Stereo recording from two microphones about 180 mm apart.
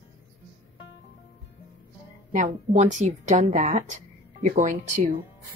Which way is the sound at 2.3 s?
40° right (ahead or behind).